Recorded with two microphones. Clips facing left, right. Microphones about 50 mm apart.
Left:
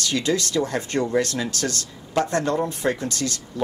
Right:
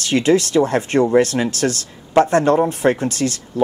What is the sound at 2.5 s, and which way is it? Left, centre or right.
Speech, right.